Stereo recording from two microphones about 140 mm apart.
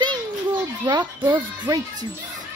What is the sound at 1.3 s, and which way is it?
Speech, 30° right (ahead or behind).